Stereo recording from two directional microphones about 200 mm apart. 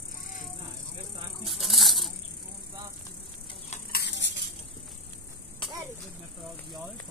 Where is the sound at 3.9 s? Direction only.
55° left (ahead or behind).